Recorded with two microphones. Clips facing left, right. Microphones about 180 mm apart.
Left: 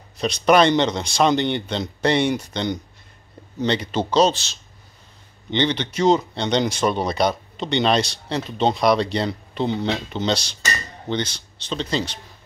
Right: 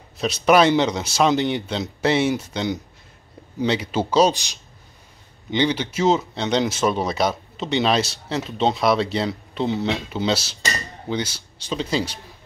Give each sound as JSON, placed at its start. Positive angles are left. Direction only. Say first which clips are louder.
{"t": 0.2, "sound": "speech", "louder": "even", "side_deg": -5}